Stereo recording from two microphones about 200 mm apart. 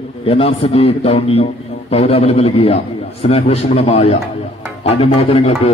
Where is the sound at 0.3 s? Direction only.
30° left (ahead or behind).